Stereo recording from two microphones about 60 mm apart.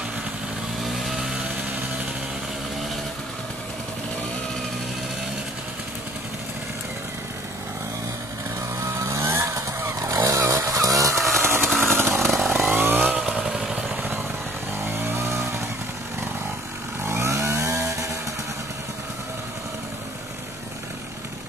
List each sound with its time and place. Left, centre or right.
0.8 s vehicle: centre
8.7 s vehicle: right
11.1 s chainsaw: centre
11.4 s a sound: right
11.8 s chainsaw: right
12.2 s chainsaw: centre
12.7 s vehicle: right
13.2 s motorcycle: centre
14.9 s vehicle: right
15.1 s vehicle: right
17.0 s vehicle: right